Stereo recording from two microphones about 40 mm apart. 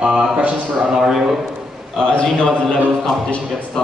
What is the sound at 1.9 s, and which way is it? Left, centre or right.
Speech, left.